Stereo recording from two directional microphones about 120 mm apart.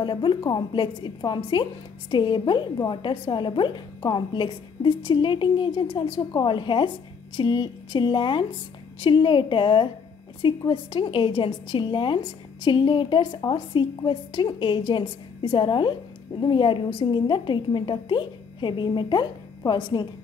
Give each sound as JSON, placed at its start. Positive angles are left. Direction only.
{"t": 0.0, "sound": "a woman's voice", "side_deg": 40}